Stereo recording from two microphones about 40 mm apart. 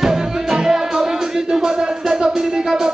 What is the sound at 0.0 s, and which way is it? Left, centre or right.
Music, centre.